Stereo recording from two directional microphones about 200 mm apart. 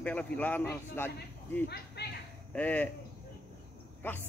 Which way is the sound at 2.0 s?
55° left (ahead or behind).